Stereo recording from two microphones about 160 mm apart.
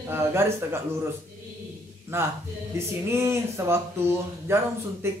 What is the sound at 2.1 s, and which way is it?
Speech, 15° right (ahead or behind).